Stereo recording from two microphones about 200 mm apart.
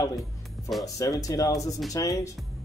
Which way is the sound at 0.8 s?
15° left (ahead or behind).